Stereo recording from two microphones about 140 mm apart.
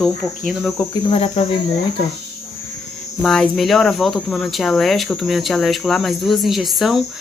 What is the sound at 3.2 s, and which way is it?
Speech, 5° left (ahead or behind).